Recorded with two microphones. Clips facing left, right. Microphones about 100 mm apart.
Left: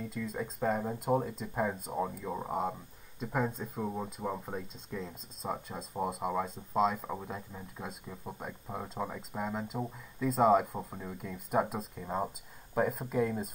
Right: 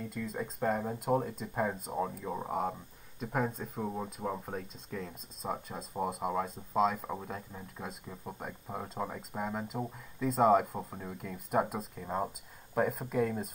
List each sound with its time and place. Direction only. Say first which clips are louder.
0.0 s speech: left 1 dB; 55° right (ahead or behind)
0.4 s speech: even; centre (ahead or behind)
5.4 s speech: even; centre (ahead or behind)